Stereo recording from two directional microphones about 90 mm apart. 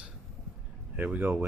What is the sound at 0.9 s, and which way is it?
Speech, 15° right (ahead or behind).